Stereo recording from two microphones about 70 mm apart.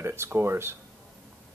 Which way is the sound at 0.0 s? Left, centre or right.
Right.